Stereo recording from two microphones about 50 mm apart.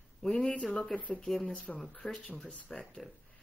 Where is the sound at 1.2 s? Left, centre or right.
Centre.